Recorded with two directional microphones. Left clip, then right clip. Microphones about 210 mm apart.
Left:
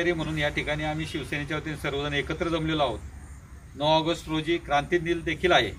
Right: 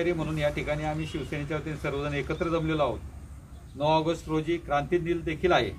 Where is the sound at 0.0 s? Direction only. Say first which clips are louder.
Left 1 dB; 5° left (ahead or behind).